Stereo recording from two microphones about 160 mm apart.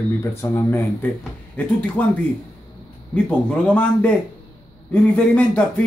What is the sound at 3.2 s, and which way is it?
Speech, 10° left (ahead or behind).